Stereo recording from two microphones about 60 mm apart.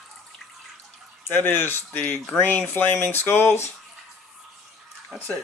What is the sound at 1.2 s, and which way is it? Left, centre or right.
Speech, left.